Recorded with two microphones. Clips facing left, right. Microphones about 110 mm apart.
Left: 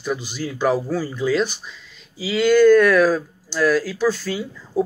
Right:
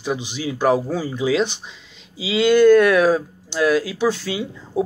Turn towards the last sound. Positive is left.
turn(degrees=-15)  # may be behind; listen again after turning